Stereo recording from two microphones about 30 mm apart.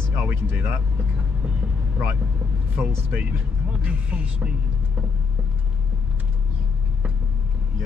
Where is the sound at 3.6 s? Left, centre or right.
Right.